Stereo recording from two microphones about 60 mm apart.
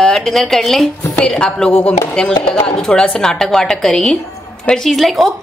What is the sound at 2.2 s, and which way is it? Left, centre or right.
Speech, centre.